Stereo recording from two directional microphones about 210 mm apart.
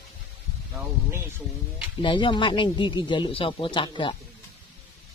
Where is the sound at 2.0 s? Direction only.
25° left (ahead or behind).